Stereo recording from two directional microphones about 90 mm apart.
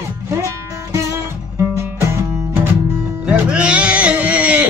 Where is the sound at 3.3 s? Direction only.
15° right (ahead or behind).